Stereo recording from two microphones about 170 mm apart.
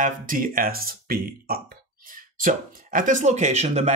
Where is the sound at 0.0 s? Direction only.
55° right (ahead or behind).